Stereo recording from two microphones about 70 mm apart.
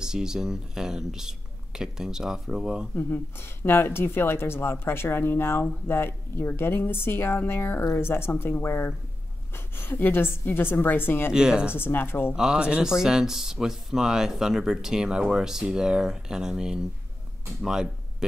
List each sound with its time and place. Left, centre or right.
0.0 s speech: centre
3.0 s speech: left
11.3 s speech: centre
11.7 s speech: left
12.4 s speech: centre